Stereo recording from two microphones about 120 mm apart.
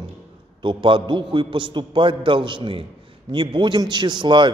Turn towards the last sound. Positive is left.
turn(degrees=-40)  # may be behind; listen again after turning